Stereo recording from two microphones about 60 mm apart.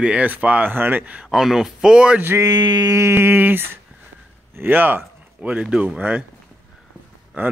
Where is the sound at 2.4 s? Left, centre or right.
Right.